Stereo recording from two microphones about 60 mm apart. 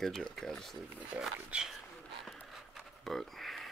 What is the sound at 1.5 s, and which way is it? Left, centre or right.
Speech, centre.